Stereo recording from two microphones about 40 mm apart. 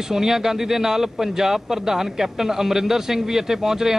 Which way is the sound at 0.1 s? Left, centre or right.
Centre.